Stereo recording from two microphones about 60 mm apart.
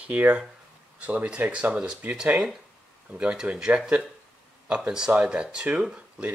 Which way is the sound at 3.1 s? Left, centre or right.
Centre.